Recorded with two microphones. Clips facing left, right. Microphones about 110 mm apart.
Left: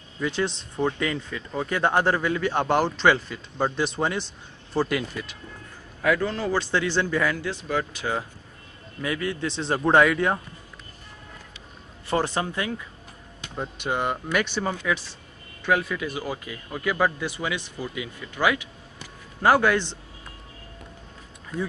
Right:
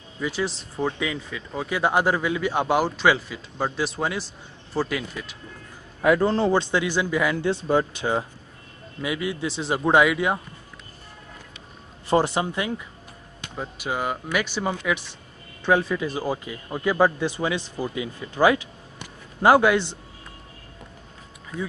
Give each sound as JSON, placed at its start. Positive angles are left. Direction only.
{"t": 0.2, "sound": "speech", "side_deg": -5}
{"t": 6.0, "sound": "speech", "side_deg": -30}
{"t": 7.3, "sound": "speech", "side_deg": -30}
{"t": 9.0, "sound": "speech", "side_deg": -15}
{"t": 12.1, "sound": "speech", "side_deg": -20}
{"t": 13.6, "sound": "speech", "side_deg": -5}
{"t": 15.6, "sound": "speech", "side_deg": -25}
{"t": 19.4, "sound": "speech", "side_deg": -20}